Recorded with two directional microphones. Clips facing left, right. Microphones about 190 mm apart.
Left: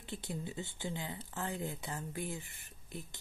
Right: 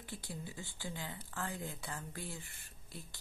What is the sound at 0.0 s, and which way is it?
A woman's voice, 20° left (ahead or behind).